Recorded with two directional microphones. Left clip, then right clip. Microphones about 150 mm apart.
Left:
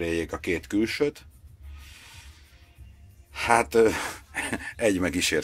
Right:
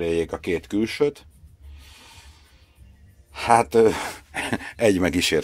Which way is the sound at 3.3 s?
40° right (ahead or behind).